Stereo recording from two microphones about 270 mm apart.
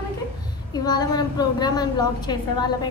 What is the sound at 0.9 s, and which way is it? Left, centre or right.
A woman's voice, centre.